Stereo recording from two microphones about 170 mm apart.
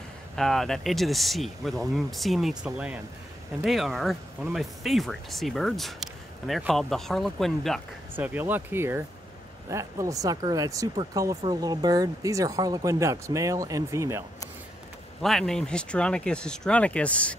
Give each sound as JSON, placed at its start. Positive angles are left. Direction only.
{"t": 0.4, "sound": "speech", "side_deg": 0}
{"t": 8.2, "sound": "speech", "side_deg": -10}
{"t": 15.2, "sound": "speech", "side_deg": 0}